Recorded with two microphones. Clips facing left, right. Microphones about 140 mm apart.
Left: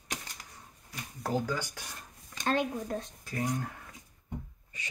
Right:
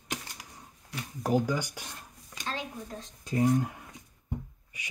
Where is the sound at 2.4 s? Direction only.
55° left (ahead or behind).